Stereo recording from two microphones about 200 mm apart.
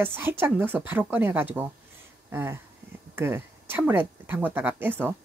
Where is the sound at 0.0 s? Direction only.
10° right (ahead or behind).